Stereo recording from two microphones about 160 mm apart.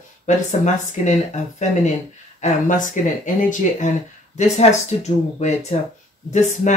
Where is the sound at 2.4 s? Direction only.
55° left (ahead or behind).